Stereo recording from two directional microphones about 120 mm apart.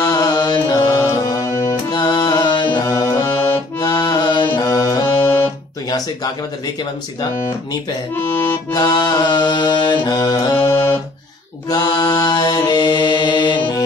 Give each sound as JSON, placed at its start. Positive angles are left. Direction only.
{"t": 0.0, "sound": "mantra", "side_deg": 30}
{"t": 0.9, "sound": "music", "side_deg": 30}
{"t": 2.8, "sound": "music", "side_deg": 25}
{"t": 3.8, "sound": "accordion", "side_deg": 35}
{"t": 4.6, "sound": "music", "side_deg": 30}
{"t": 5.2, "sound": "music", "side_deg": 15}
{"t": 8.7, "sound": "music", "side_deg": 35}
{"t": 11.7, "sound": "mantra", "side_deg": 35}